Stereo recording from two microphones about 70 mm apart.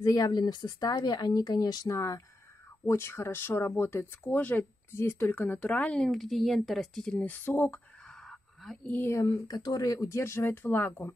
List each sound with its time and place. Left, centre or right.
0.0 s speech: left
1.9 s speech: left
5.6 s speech: centre
6.0 s speech: centre
7.2 s speech: left
8.2 s a sound: centre
9.0 s speech: left
9.5 s speech: left
10.0 s speech: left